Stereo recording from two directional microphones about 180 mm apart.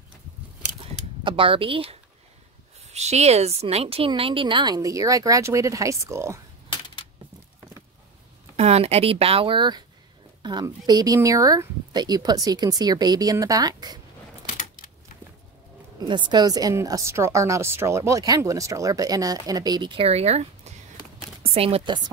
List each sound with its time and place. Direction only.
1.2 s a woman's voice: 30° right (ahead or behind)
8.5 s a woman's voice: 35° right (ahead or behind)
16.0 s a woman's voice: 25° right (ahead or behind)